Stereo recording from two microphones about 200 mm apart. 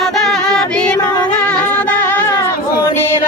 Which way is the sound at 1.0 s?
20° left (ahead or behind).